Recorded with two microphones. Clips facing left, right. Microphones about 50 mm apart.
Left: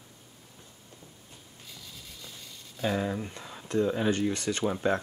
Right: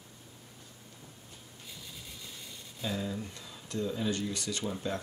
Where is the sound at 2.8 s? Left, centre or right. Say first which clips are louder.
Left 6 dB; left.